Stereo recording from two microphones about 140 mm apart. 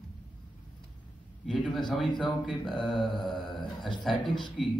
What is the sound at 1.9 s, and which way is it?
Speech, centre (ahead or behind).